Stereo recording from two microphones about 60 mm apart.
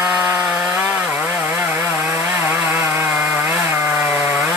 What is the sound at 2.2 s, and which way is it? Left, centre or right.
Chainsaw, right.